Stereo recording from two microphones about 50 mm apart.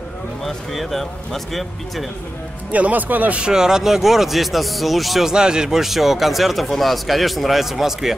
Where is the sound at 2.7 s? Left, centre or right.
Right.